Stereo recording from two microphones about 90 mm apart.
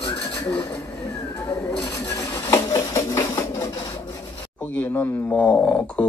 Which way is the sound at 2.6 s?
35° left (ahead or behind).